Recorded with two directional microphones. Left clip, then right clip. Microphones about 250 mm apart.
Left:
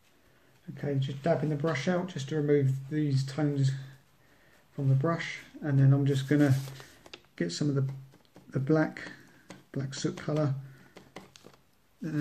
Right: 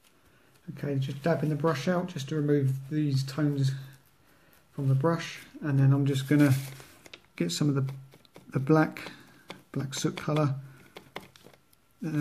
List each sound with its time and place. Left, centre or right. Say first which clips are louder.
0.7 s speech: even; centre
5.0 s speech: right 3 dB; centre